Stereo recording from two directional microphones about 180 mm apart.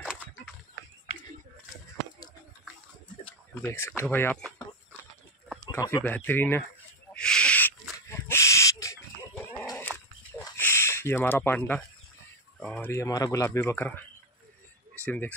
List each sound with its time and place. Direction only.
0.0 s a sound: 5° right (ahead or behind)
3.3 s speech: 10° left (ahead or behind)
5.7 s speech: 20° left (ahead or behind)
7.2 s a sound: 5° left (ahead or behind)
12.5 s speech: 10° left (ahead or behind)
15.0 s speech: 10° left (ahead or behind)